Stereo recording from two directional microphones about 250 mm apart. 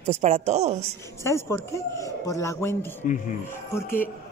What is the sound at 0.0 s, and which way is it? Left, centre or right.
Speech, right.